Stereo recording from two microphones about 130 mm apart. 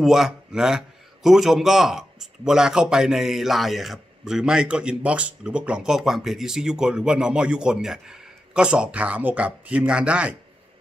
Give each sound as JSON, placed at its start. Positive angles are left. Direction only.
{"t": 0.0, "sound": "a man's voice", "side_deg": 0}